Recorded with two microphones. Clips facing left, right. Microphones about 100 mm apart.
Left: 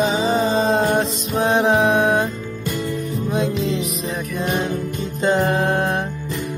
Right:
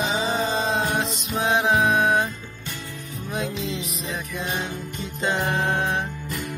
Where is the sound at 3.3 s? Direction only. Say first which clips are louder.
Left 6 dB; 30° left (ahead or behind).